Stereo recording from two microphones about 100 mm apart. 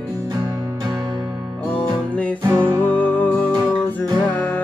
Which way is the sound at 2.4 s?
25° right (ahead or behind).